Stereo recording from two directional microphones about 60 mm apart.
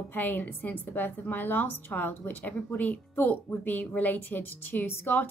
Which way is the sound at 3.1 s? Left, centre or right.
Left.